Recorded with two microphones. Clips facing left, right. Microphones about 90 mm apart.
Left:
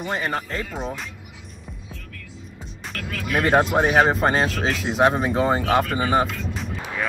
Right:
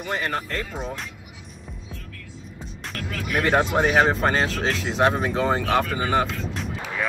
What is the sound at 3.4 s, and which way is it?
Speech, 15° left (ahead or behind).